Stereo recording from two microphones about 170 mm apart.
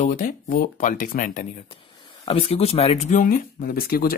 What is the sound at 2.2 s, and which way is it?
Speech, 35° left (ahead or behind).